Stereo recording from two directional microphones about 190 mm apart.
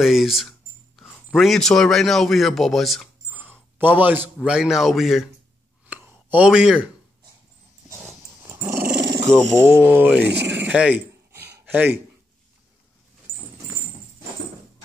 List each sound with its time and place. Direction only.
0.0 s a man's voice: centre (ahead or behind)
5.9 s a sound: 5° right (ahead or behind)
8.5 s dog: 15° right (ahead or behind)
8.8 s dog: 60° right (ahead or behind)
9.7 s a man's voice: 10° right (ahead or behind)
10.2 s a sound: 65° right (ahead or behind)
10.6 s speech: 5° right (ahead or behind)
13.3 s dog: 10° right (ahead or behind)